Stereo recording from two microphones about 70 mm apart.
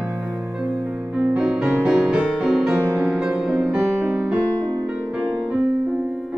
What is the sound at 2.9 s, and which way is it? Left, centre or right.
Music, right.